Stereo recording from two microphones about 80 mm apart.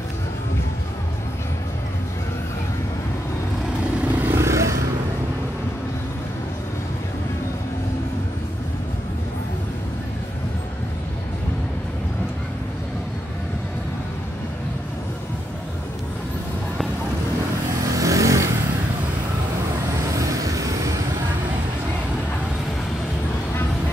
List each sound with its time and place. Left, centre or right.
4.0 s vehicle: right
4.4 s vehicle: right
17.9 s vehicle: right
20.2 s vehicle: right